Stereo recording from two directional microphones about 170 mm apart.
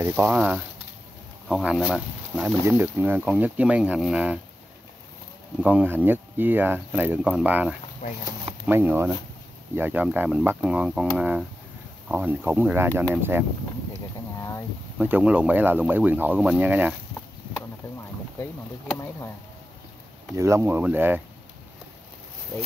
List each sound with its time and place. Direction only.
0.0 s speech: 10° right (ahead or behind)
5.6 s speech: 10° right (ahead or behind)
8.0 s speech: 45° left (ahead or behind)
8.6 s speech: 15° right (ahead or behind)
15.0 s speech: 10° right (ahead or behind)
20.3 s speech: 15° right (ahead or behind)